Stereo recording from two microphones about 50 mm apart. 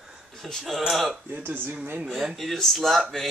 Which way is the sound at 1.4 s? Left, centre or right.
Right.